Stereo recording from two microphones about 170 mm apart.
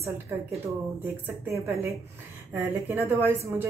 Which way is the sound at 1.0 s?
15° right (ahead or behind).